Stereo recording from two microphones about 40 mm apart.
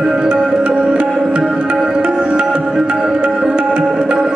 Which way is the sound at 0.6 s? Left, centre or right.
Right.